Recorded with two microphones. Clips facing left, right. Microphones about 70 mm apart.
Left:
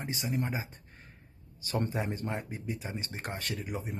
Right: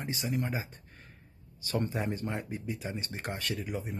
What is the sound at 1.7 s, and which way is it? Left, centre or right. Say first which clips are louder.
Speech: even; left.